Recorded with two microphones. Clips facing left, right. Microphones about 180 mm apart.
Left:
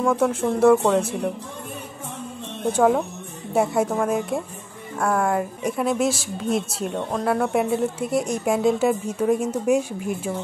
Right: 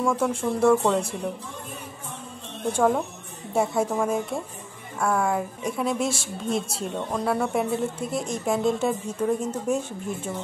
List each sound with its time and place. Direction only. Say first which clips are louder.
0.0 s a woman's voice: left 3 dB; 5° left (ahead or behind)
2.7 s a woman's voice: left 3 dB; 5° left (ahead or behind)
6.0 s a woman's voice: left 4 dB; 25° right (ahead or behind)
6.5 s a woman's voice: left 3 dB; centre (ahead or behind)